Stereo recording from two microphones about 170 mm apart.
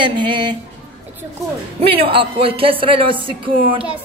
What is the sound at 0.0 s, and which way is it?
Speech, 25° right (ahead or behind).